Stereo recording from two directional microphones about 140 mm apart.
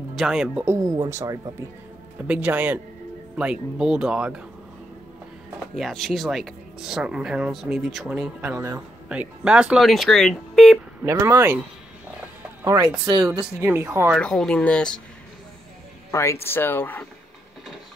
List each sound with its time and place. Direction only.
0.1 s speech: centre (ahead or behind)
0.7 s speech: 25° right (ahead or behind)
2.2 s speech: 10° right (ahead or behind)
5.8 s speech: centre (ahead or behind)
11.1 s speech: 20° right (ahead or behind)
12.6 s speech: 25° right (ahead or behind)
14.1 s speech: 5° left (ahead or behind)
16.1 s speech: 20° left (ahead or behind)